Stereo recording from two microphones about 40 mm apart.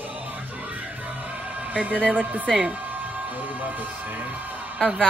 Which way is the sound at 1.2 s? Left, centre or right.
Right.